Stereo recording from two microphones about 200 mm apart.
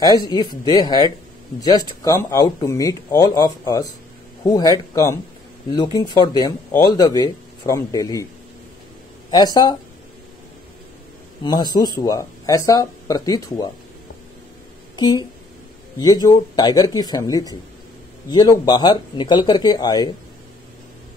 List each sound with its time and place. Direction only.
0.0 s speech: 20° left (ahead or behind)
9.3 s speech: 20° left (ahead or behind)
11.4 s speech: 20° left (ahead or behind)
15.0 s speech: 20° left (ahead or behind)